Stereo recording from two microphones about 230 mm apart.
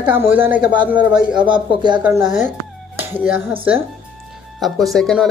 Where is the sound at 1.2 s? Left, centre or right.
Centre.